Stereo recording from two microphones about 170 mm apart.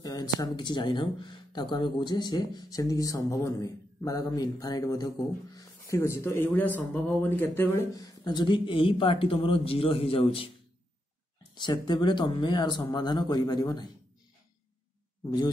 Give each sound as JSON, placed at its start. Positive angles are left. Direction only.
{"t": 0.0, "sound": "speech", "side_deg": 20}
{"t": 11.5, "sound": "speech", "side_deg": 25}